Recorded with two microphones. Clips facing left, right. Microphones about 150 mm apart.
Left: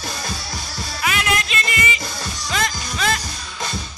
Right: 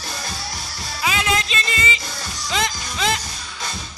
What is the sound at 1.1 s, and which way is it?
Music, 25° right (ahead or behind).